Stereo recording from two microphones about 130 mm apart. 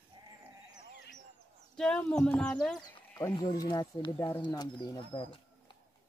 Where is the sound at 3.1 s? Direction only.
20° left (ahead or behind).